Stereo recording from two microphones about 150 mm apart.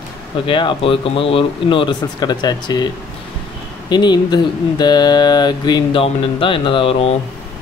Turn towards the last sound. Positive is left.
turn(degrees=40)  # may be behind; listen again after turning